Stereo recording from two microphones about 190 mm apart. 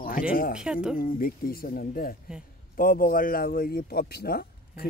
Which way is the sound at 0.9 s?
50° left (ahead or behind).